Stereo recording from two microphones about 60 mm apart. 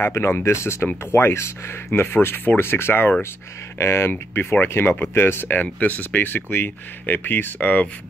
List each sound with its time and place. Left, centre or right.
0.0 s speech: left
3.7 s speech: left
4.1 s speech: left